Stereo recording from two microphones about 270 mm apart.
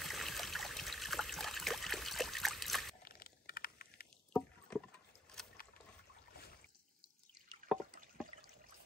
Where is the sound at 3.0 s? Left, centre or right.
Left.